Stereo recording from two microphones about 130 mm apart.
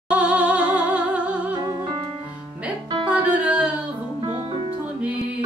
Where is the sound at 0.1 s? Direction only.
10° right (ahead or behind).